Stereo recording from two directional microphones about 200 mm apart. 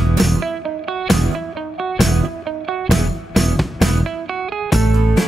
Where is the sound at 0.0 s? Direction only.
Centre (ahead or behind).